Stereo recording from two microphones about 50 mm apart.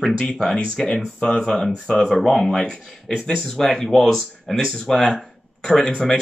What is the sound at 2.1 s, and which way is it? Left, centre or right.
Speech, centre.